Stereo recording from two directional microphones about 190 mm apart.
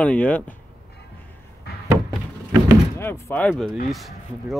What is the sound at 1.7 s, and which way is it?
Door, 55° left (ahead or behind).